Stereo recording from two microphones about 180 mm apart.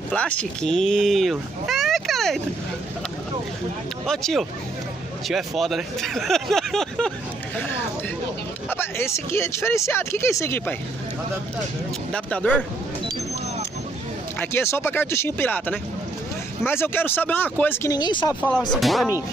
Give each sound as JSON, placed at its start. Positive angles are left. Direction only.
{"t": 0.1, "sound": "speech", "side_deg": 5}
{"t": 4.0, "sound": "speech", "side_deg": 0}
{"t": 8.6, "sound": "speech", "side_deg": 15}
{"t": 12.1, "sound": "speech", "side_deg": 5}
{"t": 14.4, "sound": "speech", "side_deg": 15}
{"t": 17.9, "sound": "speech", "side_deg": 25}
{"t": 18.7, "sound": "speech", "side_deg": 0}